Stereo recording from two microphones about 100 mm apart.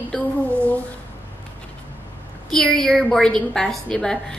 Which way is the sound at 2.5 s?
5° left (ahead or behind).